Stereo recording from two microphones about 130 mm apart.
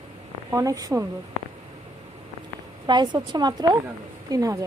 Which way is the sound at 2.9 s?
35° right (ahead or behind).